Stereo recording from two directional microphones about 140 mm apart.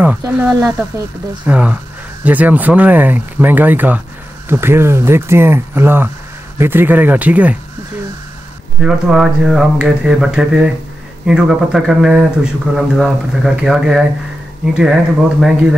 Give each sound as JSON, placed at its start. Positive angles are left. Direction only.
{"t": 0.3, "sound": "speech", "side_deg": -15}
{"t": 8.8, "sound": "speech", "side_deg": -5}